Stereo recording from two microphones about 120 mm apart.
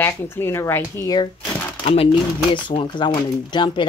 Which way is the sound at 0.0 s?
20° left (ahead or behind).